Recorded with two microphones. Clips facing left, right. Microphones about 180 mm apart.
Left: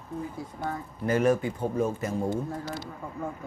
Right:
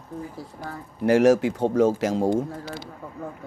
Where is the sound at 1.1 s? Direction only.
80° right.